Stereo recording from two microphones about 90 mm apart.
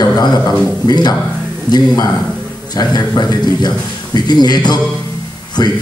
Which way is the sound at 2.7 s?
50° left (ahead or behind).